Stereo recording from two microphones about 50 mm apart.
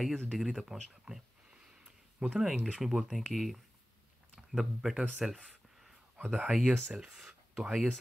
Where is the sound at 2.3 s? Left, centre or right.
Centre.